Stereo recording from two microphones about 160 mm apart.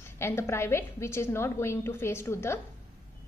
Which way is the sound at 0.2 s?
15° left (ahead or behind).